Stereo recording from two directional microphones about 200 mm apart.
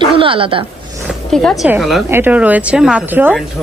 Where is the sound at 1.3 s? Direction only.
5° left (ahead or behind).